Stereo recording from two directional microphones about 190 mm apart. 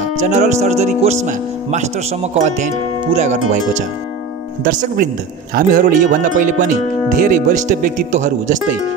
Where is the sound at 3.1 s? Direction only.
35° right (ahead or behind).